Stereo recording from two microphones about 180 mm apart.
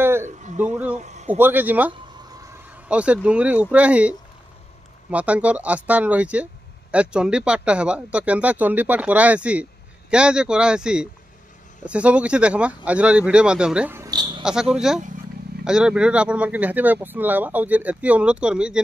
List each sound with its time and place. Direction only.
0.0 s a sound: 15° right (ahead or behind)
0.9 s a man's voice: 40° right (ahead or behind)
1.3 s speech: 10° right (ahead or behind)
2.9 s speech: 5° right (ahead or behind); by 14.4 s 25° right (ahead or behind)
14.4 s speech: 5° right (ahead or behind)